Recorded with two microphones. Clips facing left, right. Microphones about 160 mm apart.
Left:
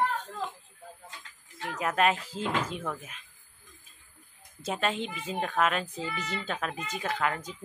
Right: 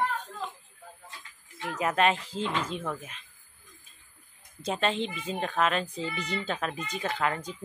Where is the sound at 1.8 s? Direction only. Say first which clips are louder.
Right 1 dB; centre (ahead or behind).